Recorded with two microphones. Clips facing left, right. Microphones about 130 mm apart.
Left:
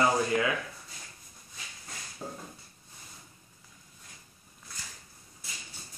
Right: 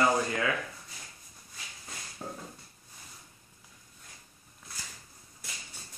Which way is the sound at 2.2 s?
10° right (ahead or behind).